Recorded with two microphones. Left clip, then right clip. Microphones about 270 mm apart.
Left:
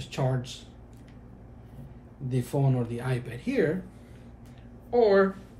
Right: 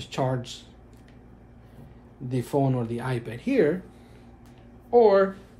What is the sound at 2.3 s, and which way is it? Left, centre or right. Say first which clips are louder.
Speech: right 4 dB; right.